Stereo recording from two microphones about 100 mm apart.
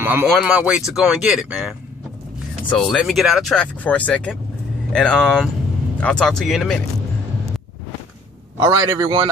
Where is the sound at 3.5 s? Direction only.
10° left (ahead or behind).